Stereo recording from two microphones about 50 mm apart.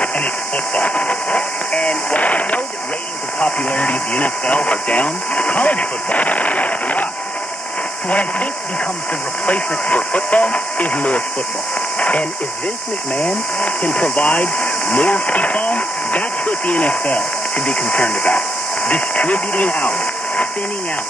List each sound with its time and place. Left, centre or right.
0.7 s speech: left
8.1 s speech: left
9.5 s speech: left
12.0 s a sound: left
13.6 s speech: left